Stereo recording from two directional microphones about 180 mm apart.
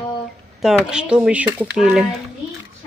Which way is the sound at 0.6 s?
5° right (ahead or behind).